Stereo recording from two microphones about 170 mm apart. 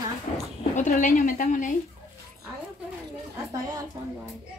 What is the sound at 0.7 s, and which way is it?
A woman's voice, 45° left (ahead or behind).